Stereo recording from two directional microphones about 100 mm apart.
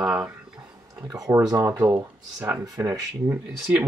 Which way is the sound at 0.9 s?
35° right (ahead or behind).